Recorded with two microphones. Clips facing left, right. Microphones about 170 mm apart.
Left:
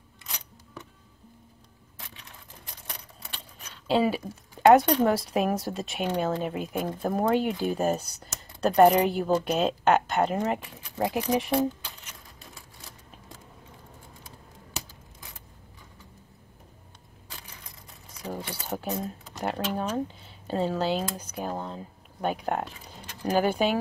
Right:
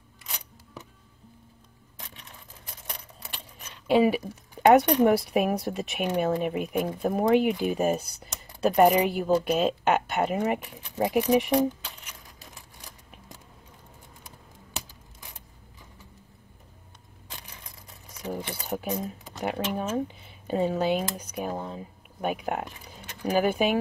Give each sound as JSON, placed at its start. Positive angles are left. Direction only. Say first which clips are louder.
{"t": 3.8, "sound": "speech", "louder": "right 3 dB", "side_deg": -15}
{"t": 18.3, "sound": "a sound", "louder": "right 2 dB", "side_deg": -15}
{"t": 18.9, "sound": "speech", "louder": "right 1 dB", "side_deg": -5}